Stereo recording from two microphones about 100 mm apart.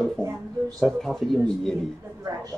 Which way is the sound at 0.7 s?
5° left (ahead or behind).